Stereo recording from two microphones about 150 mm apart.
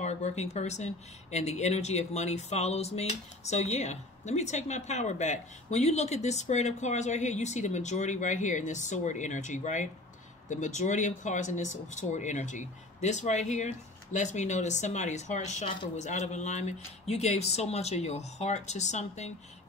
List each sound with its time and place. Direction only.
0.0 s speech: 50° left (ahead or behind)